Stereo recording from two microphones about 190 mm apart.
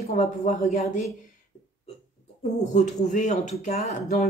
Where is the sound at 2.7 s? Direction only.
40° left (ahead or behind).